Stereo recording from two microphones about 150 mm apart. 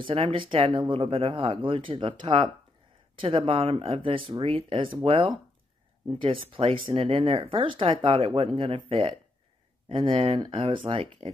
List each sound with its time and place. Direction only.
0.0 s speech: 40° right (ahead or behind)